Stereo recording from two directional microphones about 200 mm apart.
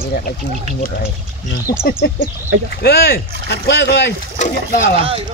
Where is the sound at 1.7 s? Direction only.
50° left (ahead or behind).